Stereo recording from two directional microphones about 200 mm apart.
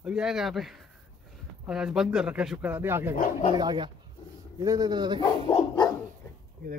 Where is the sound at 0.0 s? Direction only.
5° right (ahead or behind).